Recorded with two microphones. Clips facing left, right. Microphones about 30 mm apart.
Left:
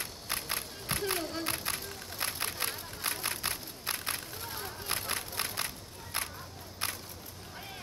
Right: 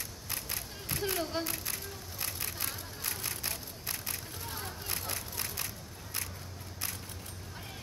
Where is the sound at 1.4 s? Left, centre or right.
Left.